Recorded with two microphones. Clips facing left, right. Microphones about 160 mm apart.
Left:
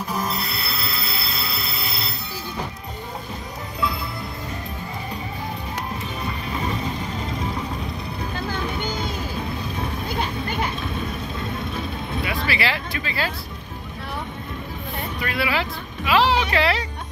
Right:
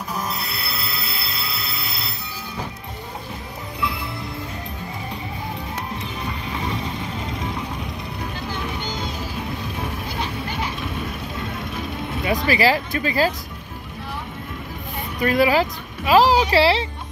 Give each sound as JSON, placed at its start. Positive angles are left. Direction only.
{"t": 0.1, "sound": "music", "side_deg": 0}
{"t": 12.4, "sound": "speech", "side_deg": -40}
{"t": 15.2, "sound": "speech", "side_deg": -40}